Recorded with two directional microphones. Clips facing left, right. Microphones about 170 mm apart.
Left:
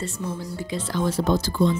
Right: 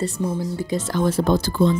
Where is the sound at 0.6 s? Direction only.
50° right (ahead or behind).